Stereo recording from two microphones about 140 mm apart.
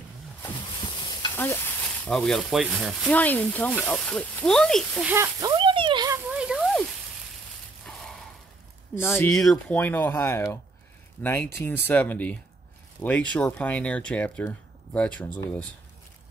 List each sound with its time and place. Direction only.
0.8 s stir: 30° left (ahead or behind)
1.3 s speech: 15° left (ahead or behind); by 3.1 s centre (ahead or behind)
3.1 s speech: 10° left (ahead or behind)
5.1 s speech: 20° right (ahead or behind)
5.5 s a sound: 35° right (ahead or behind)
6.1 s a sound: 10° right (ahead or behind)
9.5 s speech: 10° left (ahead or behind)